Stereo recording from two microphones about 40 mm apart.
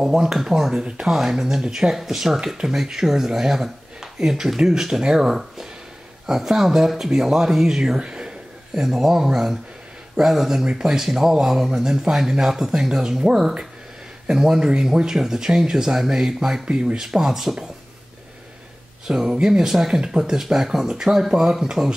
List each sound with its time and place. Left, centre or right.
0.2 s speech: centre
0.7 s speech: centre
10.6 s speech: centre
19.0 s speech: centre